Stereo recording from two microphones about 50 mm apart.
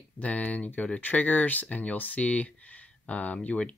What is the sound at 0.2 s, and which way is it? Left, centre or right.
Speech, left.